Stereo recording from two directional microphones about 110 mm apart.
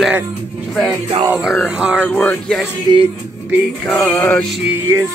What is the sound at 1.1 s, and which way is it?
Music, 60° right (ahead or behind).